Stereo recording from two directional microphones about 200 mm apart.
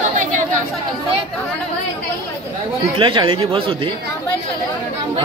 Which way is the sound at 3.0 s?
25° right (ahead or behind).